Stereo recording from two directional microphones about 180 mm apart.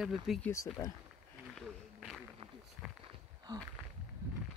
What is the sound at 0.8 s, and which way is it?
Speech, 20° left (ahead or behind).